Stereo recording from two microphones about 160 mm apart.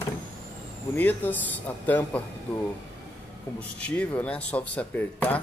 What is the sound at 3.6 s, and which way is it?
Speech, 5° left (ahead or behind).